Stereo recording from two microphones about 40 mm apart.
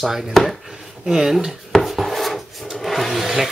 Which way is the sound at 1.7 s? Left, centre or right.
Centre.